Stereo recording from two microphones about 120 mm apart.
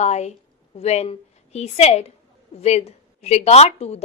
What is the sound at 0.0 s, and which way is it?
Speech, 70° left (ahead or behind).